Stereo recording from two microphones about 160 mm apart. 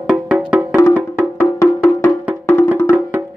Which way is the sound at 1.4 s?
15° left (ahead or behind).